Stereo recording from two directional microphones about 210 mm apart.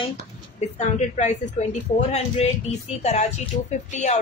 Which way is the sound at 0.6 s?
30° left (ahead or behind).